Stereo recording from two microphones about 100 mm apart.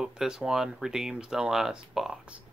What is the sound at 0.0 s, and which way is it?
Speech, 5° right (ahead or behind).